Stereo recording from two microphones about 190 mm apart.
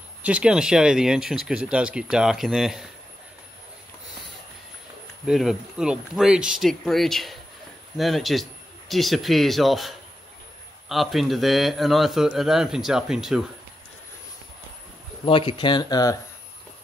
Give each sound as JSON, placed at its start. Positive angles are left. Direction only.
{"t": 0.2, "sound": "speech", "side_deg": -5}
{"t": 5.2, "sound": "speech", "side_deg": 0}
{"t": 15.2, "sound": "speech", "side_deg": 25}